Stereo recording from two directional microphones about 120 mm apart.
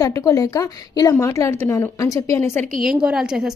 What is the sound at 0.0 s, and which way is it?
A woman's voice, 30° left (ahead or behind).